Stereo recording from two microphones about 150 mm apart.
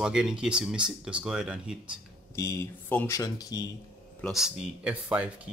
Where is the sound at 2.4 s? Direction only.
20° left (ahead or behind).